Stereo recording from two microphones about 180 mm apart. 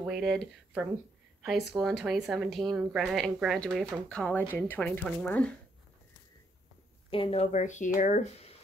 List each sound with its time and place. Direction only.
0.0 s speech: centre (ahead or behind)
7.1 s speech: 30° left (ahead or behind)